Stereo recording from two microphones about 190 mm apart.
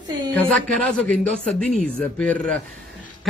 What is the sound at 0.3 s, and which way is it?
A man's voice, 5° left (ahead or behind).